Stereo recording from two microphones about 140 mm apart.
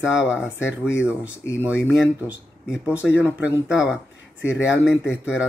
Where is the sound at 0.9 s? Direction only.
10° right (ahead or behind).